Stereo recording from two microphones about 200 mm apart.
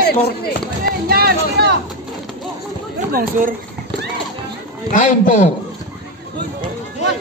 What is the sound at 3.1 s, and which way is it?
Speech, 45° right (ahead or behind).